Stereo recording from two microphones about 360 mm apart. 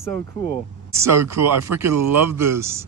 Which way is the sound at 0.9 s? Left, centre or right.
Centre.